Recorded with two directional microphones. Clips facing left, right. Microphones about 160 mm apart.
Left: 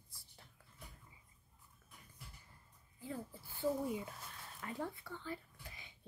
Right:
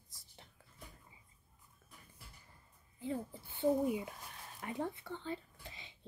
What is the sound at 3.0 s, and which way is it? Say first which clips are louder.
Speech: right 6 dB; 20° right (ahead or behind).